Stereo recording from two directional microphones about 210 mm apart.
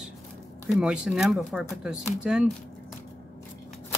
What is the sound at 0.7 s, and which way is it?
Speech, 5° right (ahead or behind).